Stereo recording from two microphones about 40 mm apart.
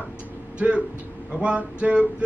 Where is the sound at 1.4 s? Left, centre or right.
Right.